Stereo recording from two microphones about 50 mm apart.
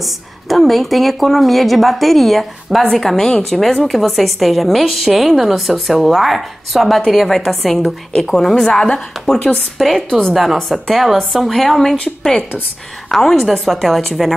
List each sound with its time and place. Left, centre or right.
0.0 s a woman's voice: centre
10.0 s a woman's voice: centre
10.3 s a woman's voice: centre
12.0 s a woman's voice: centre